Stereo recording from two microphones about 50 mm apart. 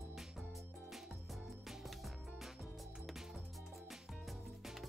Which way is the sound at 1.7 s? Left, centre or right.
Centre.